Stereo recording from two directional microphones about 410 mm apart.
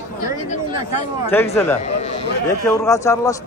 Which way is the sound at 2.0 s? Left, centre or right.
Centre.